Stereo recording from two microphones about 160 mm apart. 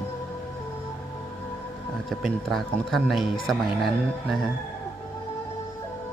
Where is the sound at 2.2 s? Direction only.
Centre (ahead or behind).